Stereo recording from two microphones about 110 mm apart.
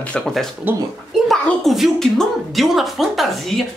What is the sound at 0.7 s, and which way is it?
Speech, 20° right (ahead or behind).